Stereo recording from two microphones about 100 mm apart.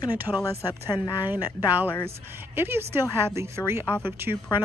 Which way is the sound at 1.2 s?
40° left (ahead or behind).